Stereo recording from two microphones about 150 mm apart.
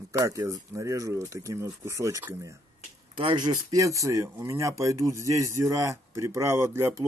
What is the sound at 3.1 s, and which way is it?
Speech, 35° right (ahead or behind).